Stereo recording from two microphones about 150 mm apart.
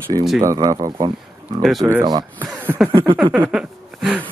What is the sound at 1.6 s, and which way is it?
Speech, centre (ahead or behind).